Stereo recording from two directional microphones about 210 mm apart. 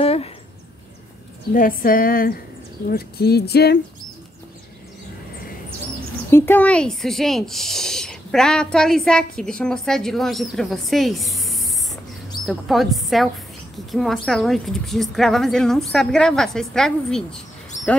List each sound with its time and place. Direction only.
0.0 s a sound: 30° left (ahead or behind)
1.5 s speech: 40° left (ahead or behind)
6.3 s a woman's voice: 10° left (ahead or behind)